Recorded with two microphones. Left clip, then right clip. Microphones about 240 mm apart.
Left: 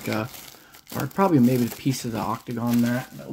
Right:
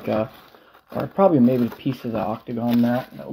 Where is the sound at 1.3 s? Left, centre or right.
Left.